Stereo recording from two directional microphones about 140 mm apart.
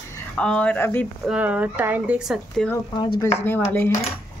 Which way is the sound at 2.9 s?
35° left (ahead or behind).